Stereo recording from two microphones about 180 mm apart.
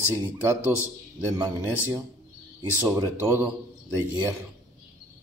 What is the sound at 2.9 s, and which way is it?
Speech, 15° right (ahead or behind).